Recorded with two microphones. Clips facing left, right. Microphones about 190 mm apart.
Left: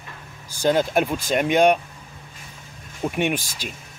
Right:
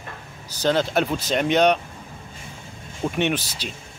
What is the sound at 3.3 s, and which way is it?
Speech, 45° left (ahead or behind).